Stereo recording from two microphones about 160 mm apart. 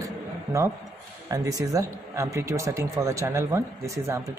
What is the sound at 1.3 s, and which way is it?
A man's voice, 20° right (ahead or behind).